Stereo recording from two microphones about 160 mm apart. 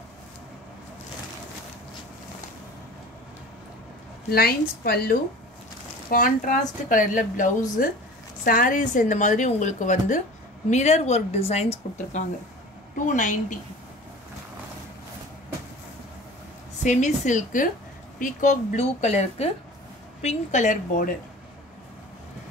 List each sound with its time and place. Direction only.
4.3 s a woman's voice: 75° left (ahead or behind)
6.0 s a woman's voice: 60° left (ahead or behind); by 12.2 s 40° left (ahead or behind)
13.0 s a woman's voice: 50° left (ahead or behind)
16.8 s a woman's voice: 50° left (ahead or behind)